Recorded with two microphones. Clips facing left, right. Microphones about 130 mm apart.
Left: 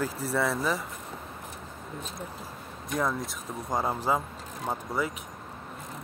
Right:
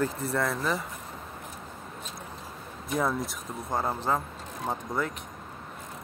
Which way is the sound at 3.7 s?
10° left (ahead or behind).